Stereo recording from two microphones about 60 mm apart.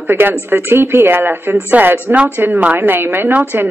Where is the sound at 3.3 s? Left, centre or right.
Right.